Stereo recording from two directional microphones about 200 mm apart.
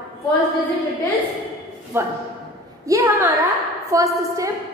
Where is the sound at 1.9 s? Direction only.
10° right (ahead or behind).